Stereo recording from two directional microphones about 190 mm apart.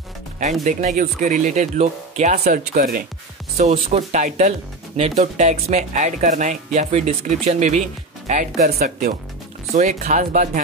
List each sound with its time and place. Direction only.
0.7 s speech: 40° right (ahead or behind)
2.3 s speech: 55° right (ahead or behind)
3.5 s speech: 40° right (ahead or behind)